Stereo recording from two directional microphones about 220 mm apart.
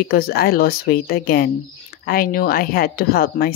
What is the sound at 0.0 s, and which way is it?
Speech, 45° left (ahead or behind).